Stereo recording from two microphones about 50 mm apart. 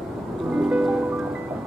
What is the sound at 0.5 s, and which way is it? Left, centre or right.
Music, right.